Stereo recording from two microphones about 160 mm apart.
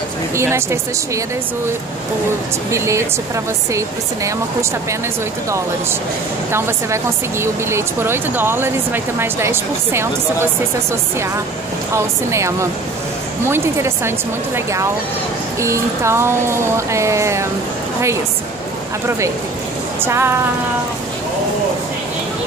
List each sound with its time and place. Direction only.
0.4 s speech: 15° right (ahead or behind)
2.7 s speech: 20° right (ahead or behind)
6.5 s speech: 15° right (ahead or behind)
19.0 s speech: 20° right (ahead or behind)